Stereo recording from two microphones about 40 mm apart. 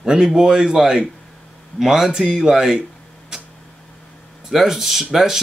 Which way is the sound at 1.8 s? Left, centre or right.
Centre.